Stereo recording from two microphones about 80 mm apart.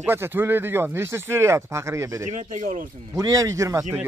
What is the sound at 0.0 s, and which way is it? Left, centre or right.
Speech, right.